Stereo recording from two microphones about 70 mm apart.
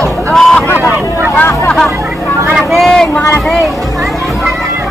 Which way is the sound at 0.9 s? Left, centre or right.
Right.